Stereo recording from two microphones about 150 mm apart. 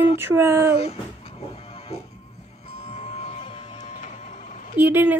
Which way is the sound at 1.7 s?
40° left (ahead or behind).